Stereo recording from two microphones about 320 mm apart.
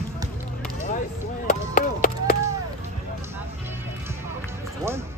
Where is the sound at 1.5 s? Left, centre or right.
Left.